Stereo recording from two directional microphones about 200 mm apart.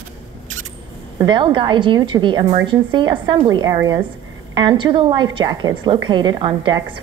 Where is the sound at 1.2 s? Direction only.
25° right (ahead or behind).